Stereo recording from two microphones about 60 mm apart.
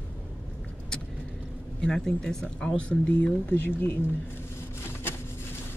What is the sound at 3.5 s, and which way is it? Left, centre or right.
Speech, left.